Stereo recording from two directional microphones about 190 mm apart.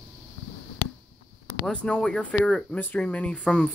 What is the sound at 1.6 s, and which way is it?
Speech, 5° left (ahead or behind).